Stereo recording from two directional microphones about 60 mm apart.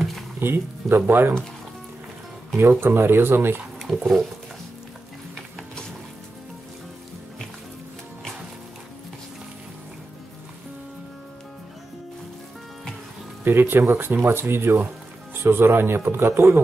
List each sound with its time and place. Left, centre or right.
0.4 s speech: right
2.8 s speech: right
3.8 s speech: centre
13.4 s speech: right